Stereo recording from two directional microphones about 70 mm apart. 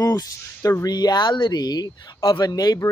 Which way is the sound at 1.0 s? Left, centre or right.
Left.